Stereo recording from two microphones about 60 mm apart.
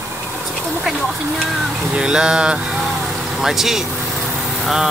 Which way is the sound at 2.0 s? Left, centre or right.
Centre.